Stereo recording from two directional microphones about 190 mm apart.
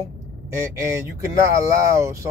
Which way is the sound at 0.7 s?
15° right (ahead or behind).